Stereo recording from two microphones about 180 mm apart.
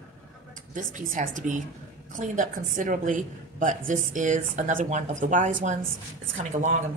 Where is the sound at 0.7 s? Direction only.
45° right (ahead or behind).